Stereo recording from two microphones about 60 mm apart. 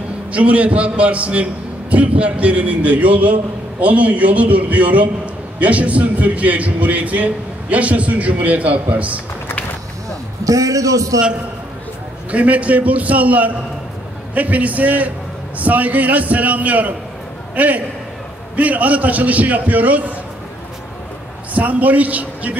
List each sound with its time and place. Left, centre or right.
0.3 s a man's voice: right
10.4 s a man's voice: right
12.3 s a man's voice: right
21.5 s a man's voice: right